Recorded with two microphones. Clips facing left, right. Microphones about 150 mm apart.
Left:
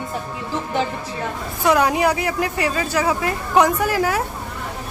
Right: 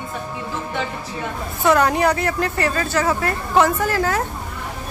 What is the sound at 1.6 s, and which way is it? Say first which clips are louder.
Speech: right 1 dB; 10° left (ahead or behind).